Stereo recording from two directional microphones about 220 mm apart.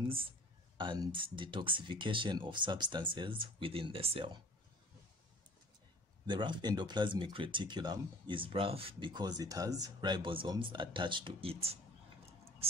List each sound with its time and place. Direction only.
0.7 s speech: 20° right (ahead or behind)
6.2 s speech: 20° right (ahead or behind)